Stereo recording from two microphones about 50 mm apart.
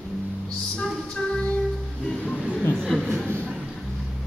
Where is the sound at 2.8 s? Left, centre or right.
Centre.